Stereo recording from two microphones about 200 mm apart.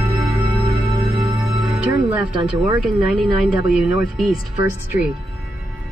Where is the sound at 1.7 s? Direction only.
5° right (ahead or behind).